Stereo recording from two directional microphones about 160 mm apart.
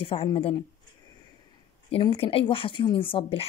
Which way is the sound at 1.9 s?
35° left (ahead or behind).